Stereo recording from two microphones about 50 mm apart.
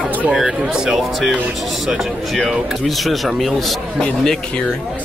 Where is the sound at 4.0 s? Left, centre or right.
Centre.